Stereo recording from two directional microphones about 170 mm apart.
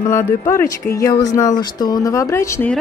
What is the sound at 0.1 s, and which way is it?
A woman's voice, 15° left (ahead or behind).